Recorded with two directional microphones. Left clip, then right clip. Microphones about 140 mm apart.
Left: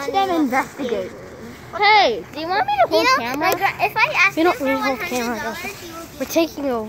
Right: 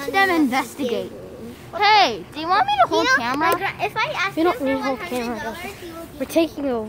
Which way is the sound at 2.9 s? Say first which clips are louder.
Left 2 dB; centre (ahead or behind).